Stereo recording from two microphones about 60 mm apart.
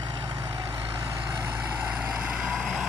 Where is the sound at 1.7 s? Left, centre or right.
Centre.